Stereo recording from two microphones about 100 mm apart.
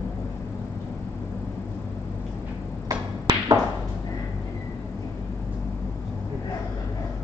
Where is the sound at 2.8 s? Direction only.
40° right (ahead or behind).